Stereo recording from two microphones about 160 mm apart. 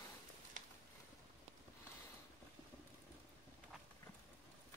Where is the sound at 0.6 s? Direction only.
50° right (ahead or behind).